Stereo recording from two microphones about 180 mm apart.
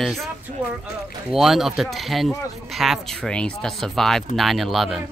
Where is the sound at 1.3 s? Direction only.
Centre (ahead or behind).